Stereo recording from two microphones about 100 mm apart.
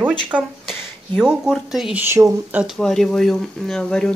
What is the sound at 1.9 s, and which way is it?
Speech, 20° right (ahead or behind).